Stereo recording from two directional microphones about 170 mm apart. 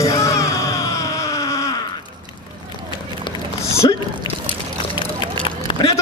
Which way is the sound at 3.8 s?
25° left (ahead or behind).